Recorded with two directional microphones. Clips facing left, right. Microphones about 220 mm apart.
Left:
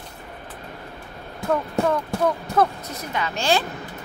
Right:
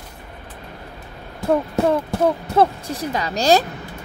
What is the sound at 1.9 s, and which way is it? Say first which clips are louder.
A woman's voice: right 3 dB; 30° right (ahead or behind).